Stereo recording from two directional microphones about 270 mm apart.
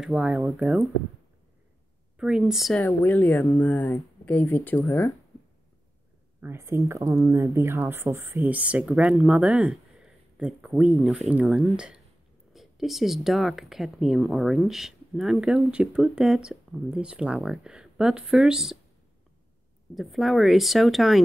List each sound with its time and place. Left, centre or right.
0.0 s speech: centre
2.1 s speech: centre
6.4 s speech: centre
20.0 s speech: centre